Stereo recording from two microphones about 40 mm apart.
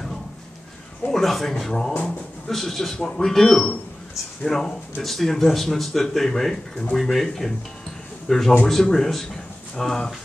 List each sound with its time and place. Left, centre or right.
1.1 s speech: centre
3.0 s speech: centre